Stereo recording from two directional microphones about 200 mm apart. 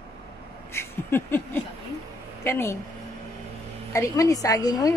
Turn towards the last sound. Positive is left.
turn(degrees=20)  # may be behind; listen again after turning